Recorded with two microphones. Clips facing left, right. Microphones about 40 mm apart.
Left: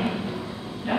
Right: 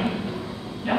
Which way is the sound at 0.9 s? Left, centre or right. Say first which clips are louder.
Right 2 dB; right.